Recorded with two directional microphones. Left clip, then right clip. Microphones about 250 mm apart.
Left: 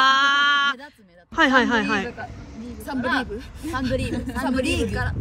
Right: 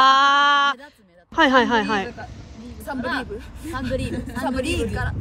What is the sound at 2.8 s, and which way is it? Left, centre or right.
A woman's voice, centre.